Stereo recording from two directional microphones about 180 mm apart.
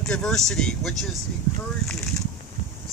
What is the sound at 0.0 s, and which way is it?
Speech, 5° left (ahead or behind).